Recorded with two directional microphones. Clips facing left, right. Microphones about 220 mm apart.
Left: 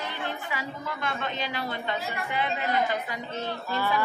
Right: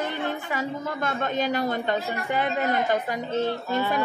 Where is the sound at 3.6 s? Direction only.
20° right (ahead or behind).